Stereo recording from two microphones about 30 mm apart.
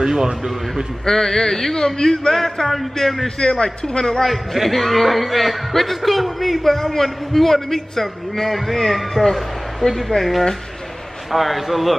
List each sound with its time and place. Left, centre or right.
0.0 s speech: right
1.0 s a man's voice: centre
2.3 s a man's voice: centre
3.3 s a man's voice: left
4.2 s a man's voice: centre